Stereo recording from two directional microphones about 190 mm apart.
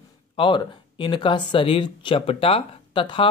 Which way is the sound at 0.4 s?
25° left (ahead or behind).